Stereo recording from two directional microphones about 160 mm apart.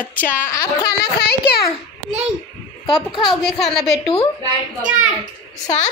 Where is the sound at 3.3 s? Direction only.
Centre (ahead or behind).